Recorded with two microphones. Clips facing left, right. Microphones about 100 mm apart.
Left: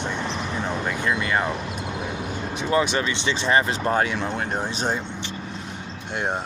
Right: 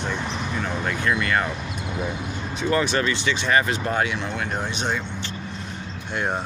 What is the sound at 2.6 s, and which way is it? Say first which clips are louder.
Speech: even; 15° left (ahead or behind).